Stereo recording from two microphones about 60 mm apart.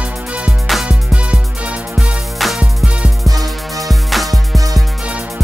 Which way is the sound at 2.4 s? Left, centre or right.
Centre.